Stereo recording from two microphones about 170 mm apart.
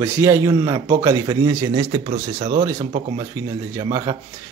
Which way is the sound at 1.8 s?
30° right (ahead or behind).